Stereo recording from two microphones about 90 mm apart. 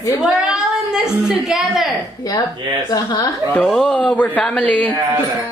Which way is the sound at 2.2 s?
45° left (ahead or behind).